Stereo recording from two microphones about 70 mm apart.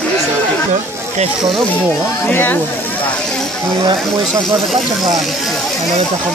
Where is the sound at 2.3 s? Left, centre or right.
Left.